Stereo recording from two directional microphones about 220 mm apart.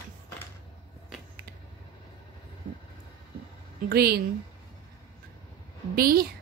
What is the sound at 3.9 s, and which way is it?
Speech, 45° right (ahead or behind).